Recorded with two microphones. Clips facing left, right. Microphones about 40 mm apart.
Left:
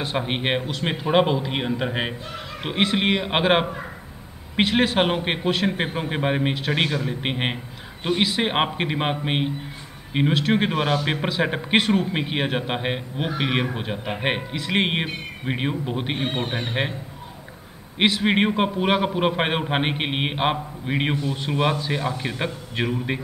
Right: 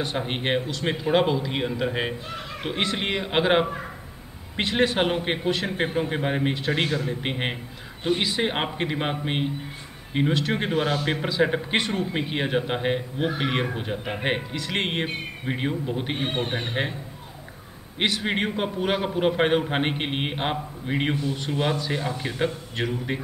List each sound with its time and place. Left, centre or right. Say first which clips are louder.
0.0 s speech: left 2 dB; centre
0.3 s a man's voice: left 1 dB; left
2.6 s a man's voice: left 5 dB; left
5.8 s a man's voice: even; left
6.9 s a man's voice: left 1 dB; centre
13.7 s a man's voice: left 1 dB; left
16.3 s speech: left 1 dB; centre
17.9 s a man's voice: left 5 dB; left
21.2 s speech: left 1 dB; left
21.5 s a man's voice: left 4 dB; left